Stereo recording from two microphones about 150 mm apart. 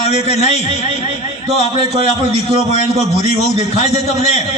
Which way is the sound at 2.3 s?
50° left (ahead or behind).